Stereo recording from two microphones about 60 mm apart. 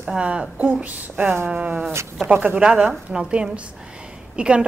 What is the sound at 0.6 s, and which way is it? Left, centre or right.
A woman's voice, right.